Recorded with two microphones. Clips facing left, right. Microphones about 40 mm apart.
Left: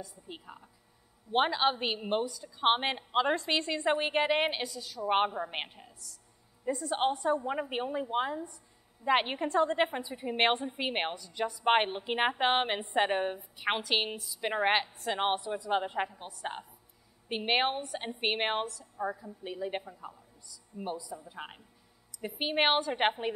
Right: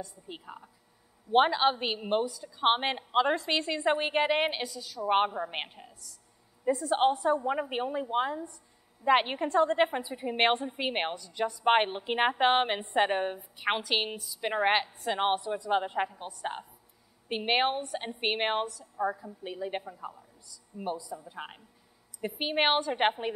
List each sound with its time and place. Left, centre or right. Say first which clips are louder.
0.3 s a woman's voice: right 3 dB; centre
17.3 s a woman's voice: right 2 dB; centre